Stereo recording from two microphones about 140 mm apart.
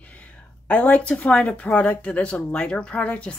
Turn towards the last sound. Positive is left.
turn(degrees=10)  # may be behind; listen again after turning